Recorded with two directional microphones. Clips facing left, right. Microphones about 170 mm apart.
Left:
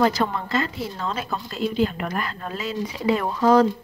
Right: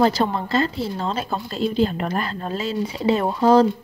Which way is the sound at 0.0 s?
30° right (ahead or behind).